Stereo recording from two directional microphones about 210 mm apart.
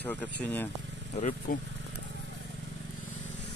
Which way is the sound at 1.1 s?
35° left (ahead or behind).